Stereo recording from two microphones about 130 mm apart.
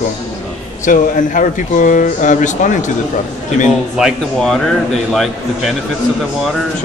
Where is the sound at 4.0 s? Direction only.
5° left (ahead or behind).